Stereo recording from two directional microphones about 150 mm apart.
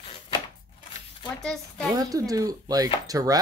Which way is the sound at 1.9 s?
25° right (ahead or behind).